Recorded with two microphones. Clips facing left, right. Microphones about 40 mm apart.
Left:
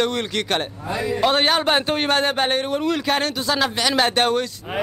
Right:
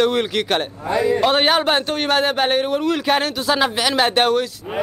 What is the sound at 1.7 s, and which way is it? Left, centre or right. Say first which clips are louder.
Speech: right 1 dB; centre.